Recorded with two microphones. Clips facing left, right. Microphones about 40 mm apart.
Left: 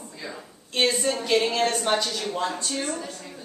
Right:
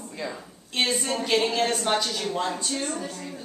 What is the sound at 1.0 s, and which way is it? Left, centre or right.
A capella, centre.